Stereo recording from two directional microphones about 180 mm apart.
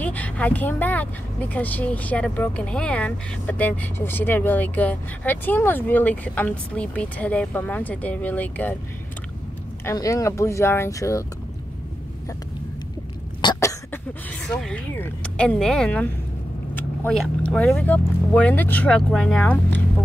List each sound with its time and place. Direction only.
0.0 s speech: 10° left (ahead or behind)
9.8 s speech: 20° left (ahead or behind)
13.4 s cough: 20° left (ahead or behind)
14.5 s speech: 5° left (ahead or behind)